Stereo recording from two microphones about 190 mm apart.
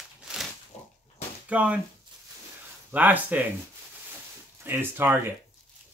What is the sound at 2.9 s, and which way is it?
Speech, 10° right (ahead or behind).